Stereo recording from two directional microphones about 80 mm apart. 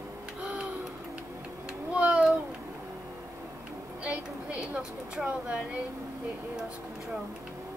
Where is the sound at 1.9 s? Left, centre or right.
Centre.